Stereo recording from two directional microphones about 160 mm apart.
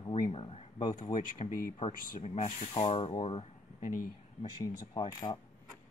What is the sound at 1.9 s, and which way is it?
Speech, 65° left (ahead or behind).